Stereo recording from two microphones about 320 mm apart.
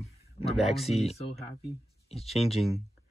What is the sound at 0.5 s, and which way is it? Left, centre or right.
Speech, centre.